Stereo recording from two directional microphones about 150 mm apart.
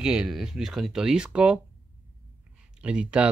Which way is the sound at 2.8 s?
5° right (ahead or behind).